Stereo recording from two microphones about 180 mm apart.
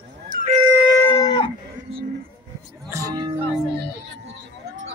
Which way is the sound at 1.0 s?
20° left (ahead or behind).